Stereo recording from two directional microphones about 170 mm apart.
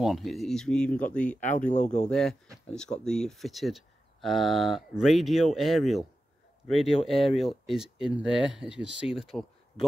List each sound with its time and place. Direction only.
0.0 s speech: centre (ahead or behind)
1.7 s speech: 45° left (ahead or behind)
2.0 s speech: centre (ahead or behind)